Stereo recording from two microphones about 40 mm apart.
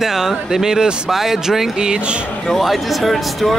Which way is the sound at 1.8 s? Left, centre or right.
Right.